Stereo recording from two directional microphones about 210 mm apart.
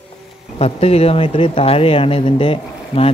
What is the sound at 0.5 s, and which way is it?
Speech, 30° left (ahead or behind).